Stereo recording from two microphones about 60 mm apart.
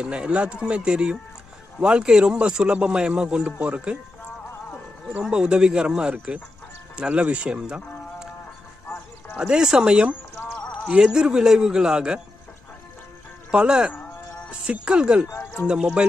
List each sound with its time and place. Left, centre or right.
0.0 s speech: centre
5.3 s speech: centre
9.4 s speech: centre
11.1 s speech: centre
13.5 s speech: centre